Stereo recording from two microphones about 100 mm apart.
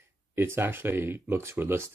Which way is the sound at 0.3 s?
25° right (ahead or behind).